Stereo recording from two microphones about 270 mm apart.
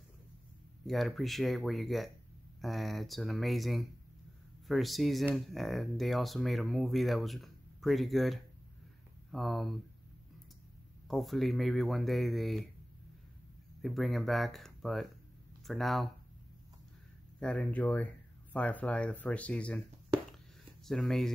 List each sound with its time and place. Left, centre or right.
0.8 s speech: centre
11.1 s speech: centre
13.8 s speech: centre
17.4 s speech: centre
20.8 s speech: centre